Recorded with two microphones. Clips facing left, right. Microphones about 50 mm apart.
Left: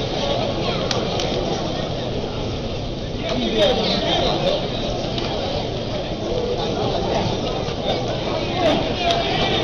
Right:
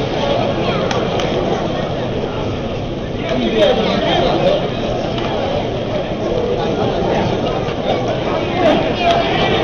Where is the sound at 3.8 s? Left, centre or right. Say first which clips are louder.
Right 6 dB; right.